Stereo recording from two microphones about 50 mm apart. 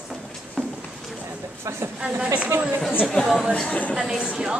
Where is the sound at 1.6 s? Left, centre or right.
Right.